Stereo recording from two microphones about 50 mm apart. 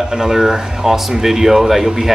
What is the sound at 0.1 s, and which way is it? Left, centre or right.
Speech, centre.